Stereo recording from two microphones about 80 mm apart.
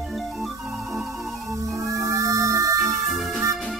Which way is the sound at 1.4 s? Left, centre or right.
Right.